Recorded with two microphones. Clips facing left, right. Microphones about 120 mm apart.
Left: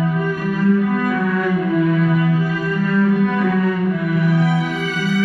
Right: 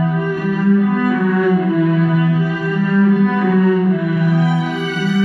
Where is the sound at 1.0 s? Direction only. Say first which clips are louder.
Right 4 dB; 10° right (ahead or behind).